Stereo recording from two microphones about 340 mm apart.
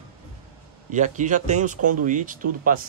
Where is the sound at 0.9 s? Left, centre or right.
Right.